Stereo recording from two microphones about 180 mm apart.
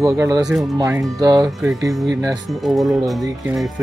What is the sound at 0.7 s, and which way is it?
Speech, 15° right (ahead or behind).